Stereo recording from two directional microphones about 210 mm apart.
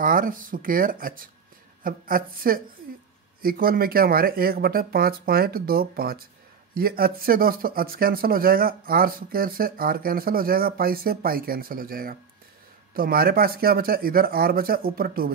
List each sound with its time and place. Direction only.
0.0 s speech: 40° right (ahead or behind)